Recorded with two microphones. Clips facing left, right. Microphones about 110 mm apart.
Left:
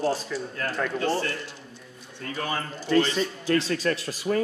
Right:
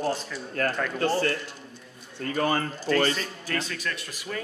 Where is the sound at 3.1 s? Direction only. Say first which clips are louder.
Left 7 dB; 30° left (ahead or behind).